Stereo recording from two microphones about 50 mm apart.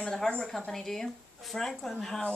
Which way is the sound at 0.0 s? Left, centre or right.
Centre.